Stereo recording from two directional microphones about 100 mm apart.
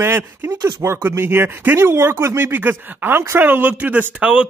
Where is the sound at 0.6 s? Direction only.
40° right (ahead or behind).